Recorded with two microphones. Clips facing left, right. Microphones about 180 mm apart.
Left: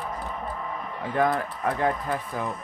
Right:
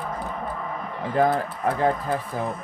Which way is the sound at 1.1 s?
30° right (ahead or behind).